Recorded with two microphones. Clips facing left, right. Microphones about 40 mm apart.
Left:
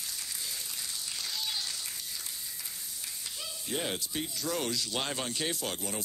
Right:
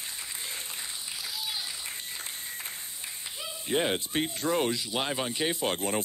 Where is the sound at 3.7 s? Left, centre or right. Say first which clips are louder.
Right 7 dB; right.